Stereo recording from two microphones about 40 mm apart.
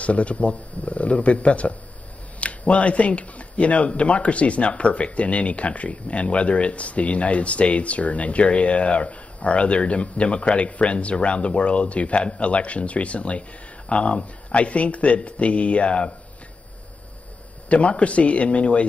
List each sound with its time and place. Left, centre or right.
0.0 s speech: left
17.6 s speech: left